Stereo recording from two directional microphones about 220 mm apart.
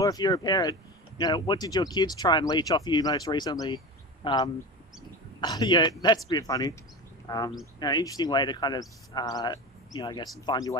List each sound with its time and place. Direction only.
0.0 s a man's voice: 15° left (ahead or behind)